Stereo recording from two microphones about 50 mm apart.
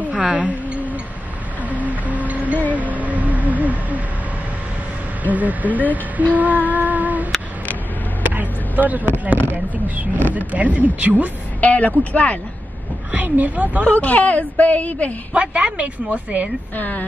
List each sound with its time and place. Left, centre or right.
0.1 s a sound: right
1.7 s music: right
2.7 s a sound: right
5.2 s speech: right
8.2 s a sound: right
9.5 s speech: right
11.6 s speech: left
13.1 s a woman's voice: right
13.8 s speech: left
15.3 s a woman's voice: right
16.7 s speech: left